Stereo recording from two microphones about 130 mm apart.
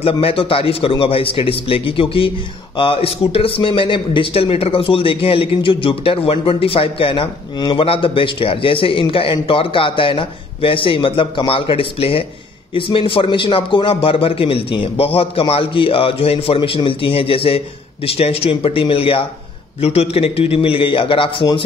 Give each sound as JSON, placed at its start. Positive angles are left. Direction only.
{"t": 0.0, "sound": "speech", "side_deg": 45}